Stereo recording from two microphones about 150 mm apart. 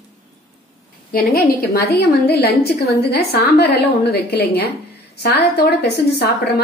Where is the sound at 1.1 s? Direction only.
90° left.